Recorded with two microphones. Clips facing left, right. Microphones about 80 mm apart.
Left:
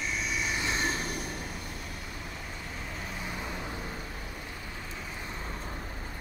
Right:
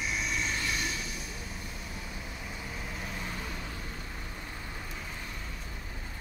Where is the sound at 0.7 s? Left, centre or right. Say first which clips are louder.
Left 4 dB; left.